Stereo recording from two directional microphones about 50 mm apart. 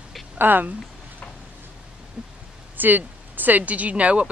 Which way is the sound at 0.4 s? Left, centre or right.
Right.